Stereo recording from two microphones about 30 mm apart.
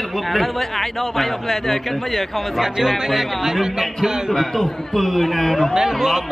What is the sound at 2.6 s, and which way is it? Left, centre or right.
Speech, centre.